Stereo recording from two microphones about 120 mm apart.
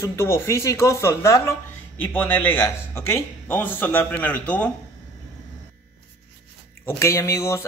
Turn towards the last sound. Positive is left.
turn(degrees=25)  # may be behind; listen again after turning